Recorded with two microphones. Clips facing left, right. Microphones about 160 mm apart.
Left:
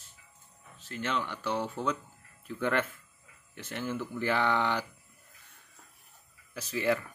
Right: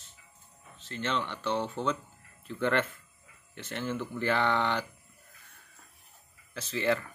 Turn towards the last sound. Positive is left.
turn(degrees=10)  # may be behind; listen again after turning